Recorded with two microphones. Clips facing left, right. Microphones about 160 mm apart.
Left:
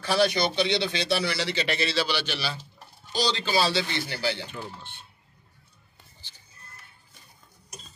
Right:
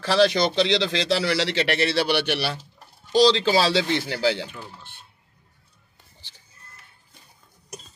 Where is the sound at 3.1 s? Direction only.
90° right.